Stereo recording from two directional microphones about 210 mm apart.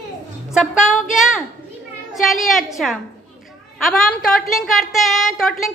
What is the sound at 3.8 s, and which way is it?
A woman's voice, centre (ahead or behind).